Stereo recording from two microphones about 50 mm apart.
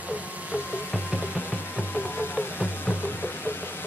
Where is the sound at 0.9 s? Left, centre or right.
Left.